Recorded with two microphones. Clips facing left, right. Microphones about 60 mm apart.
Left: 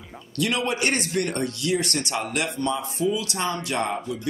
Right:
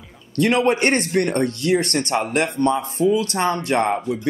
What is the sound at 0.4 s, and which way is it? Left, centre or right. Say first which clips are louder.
A man's voice: right 7 dB; right.